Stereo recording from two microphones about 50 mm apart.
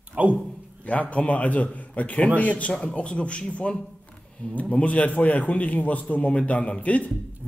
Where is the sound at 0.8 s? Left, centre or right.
Left.